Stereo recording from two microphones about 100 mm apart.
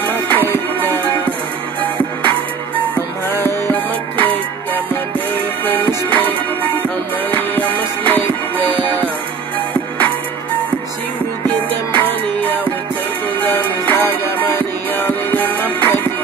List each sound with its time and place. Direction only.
0.0 s music: 20° left (ahead or behind)
3.4 s music: 20° left (ahead or behind)
5.7 s music: 20° left (ahead or behind)
7.2 s music: 20° left (ahead or behind)
11.9 s music: 20° left (ahead or behind)